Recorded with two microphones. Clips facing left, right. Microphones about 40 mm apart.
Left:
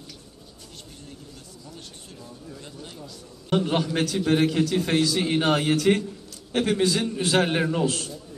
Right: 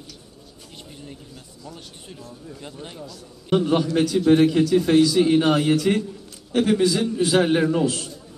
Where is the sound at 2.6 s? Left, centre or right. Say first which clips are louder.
Right 4 dB; right.